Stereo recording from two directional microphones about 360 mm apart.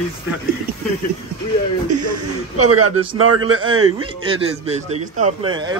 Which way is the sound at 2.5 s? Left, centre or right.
Right.